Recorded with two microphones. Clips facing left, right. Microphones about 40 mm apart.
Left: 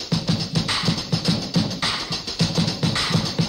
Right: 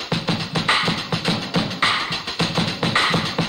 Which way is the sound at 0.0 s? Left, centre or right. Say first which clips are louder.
Right 1 dB; right.